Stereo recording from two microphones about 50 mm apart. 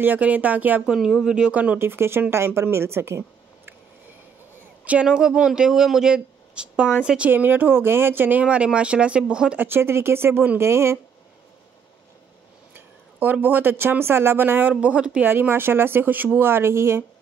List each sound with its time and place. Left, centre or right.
0.2 s speech: right
0.8 s speech: centre
1.3 s speech: right
1.8 s a woman's voice: right
5.0 s speech: centre
7.2 s speech: right
8.4 s speech: right
9.6 s speech: right
12.7 s speech: right
14.7 s speech: right
15.2 s speech: right